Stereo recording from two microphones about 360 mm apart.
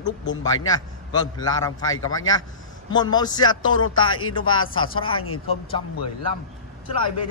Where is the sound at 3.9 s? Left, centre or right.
Left.